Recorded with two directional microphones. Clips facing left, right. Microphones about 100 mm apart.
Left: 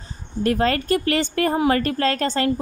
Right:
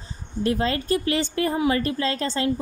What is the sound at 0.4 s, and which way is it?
A woman's voice, 60° left (ahead or behind).